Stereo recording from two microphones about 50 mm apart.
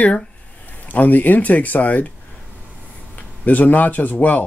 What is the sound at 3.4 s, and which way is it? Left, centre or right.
Speech, left.